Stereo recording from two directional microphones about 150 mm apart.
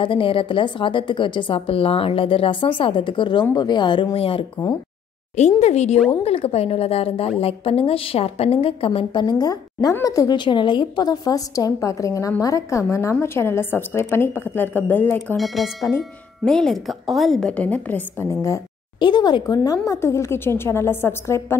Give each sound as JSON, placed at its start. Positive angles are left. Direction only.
{"t": 0.0, "sound": "a woman's voice", "side_deg": 35}
{"t": 5.6, "sound": "a woman's voice", "side_deg": 50}
{"t": 15.1, "sound": "speech", "side_deg": 0}
{"t": 18.4, "sound": "a woman's voice", "side_deg": 25}